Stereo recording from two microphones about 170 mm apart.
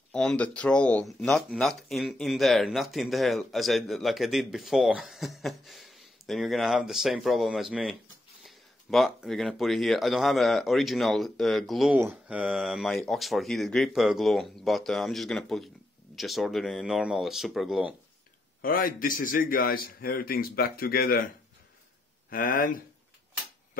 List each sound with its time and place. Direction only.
0.1 s speech: 5° left (ahead or behind)
18.6 s a man's voice: 60° left (ahead or behind)
22.3 s speech: 55° left (ahead or behind)